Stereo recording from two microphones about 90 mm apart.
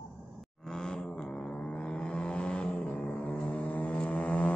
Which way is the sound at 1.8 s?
10° left (ahead or behind).